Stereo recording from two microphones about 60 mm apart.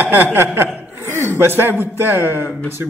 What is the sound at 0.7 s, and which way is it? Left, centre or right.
Chuckle, right.